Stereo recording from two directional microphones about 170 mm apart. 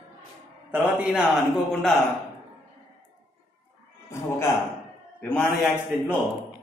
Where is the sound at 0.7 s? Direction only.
10° right (ahead or behind).